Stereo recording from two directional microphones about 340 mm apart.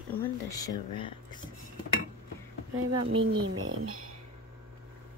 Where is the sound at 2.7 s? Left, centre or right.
Right.